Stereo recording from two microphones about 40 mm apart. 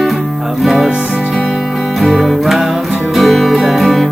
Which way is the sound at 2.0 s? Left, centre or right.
Centre.